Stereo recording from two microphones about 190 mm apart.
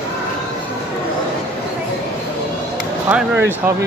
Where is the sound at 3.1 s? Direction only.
10° right (ahead or behind).